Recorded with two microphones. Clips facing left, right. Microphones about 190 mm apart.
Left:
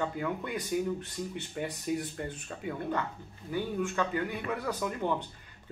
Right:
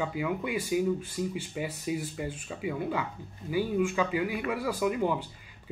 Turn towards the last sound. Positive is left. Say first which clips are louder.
# right 4 dB
turn(degrees=-10)  # may be behind; listen again after turning